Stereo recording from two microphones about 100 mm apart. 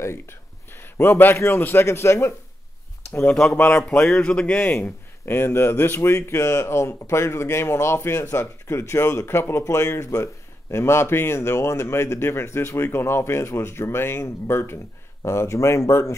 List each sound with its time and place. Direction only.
0.0 s a man's voice: 25° left (ahead or behind)
3.3 s speech: 5° left (ahead or behind)
3.5 s speech: 20° left (ahead or behind)
3.8 s speech: 5° left (ahead or behind)
4.7 s speech: 25° left (ahead or behind)